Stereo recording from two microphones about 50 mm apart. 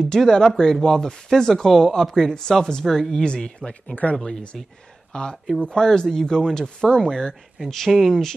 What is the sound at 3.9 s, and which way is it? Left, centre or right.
Speech, left.